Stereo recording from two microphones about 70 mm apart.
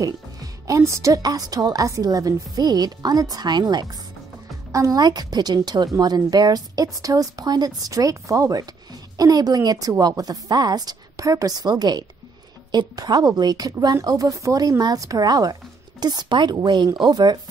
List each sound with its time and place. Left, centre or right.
0.7 s speech: right
1.2 s speech: right
4.7 s speech: right
12.7 s speech: right
16.0 s a woman's voice: right